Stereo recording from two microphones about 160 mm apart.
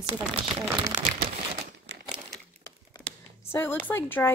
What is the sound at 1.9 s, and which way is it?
Crumpling, 90° right.